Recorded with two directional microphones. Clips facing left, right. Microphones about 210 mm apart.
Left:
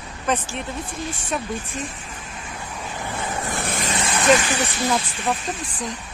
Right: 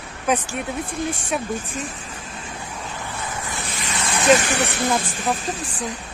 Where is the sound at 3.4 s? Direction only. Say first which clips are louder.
Left 5 dB; 55° left (ahead or behind).